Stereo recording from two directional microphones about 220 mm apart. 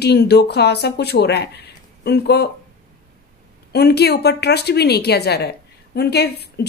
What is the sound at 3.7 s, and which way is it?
A woman's voice, 45° left (ahead or behind).